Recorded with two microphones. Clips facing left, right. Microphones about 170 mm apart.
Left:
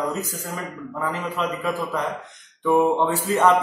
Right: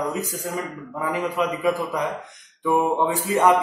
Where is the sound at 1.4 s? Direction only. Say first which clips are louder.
Right 2 dB; 10° right (ahead or behind).